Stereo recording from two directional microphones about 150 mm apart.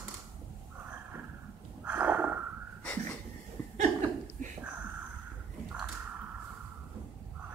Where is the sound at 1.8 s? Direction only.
10° right (ahead or behind).